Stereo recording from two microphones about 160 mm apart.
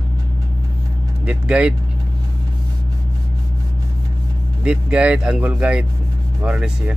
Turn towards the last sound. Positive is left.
turn(degrees=-10)  # may be behind; listen again after turning